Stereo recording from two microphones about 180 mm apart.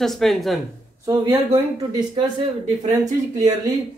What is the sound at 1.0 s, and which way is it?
Speech, 20° right (ahead or behind).